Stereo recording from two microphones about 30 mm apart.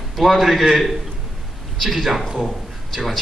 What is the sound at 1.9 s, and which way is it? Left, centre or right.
A man's voice, centre.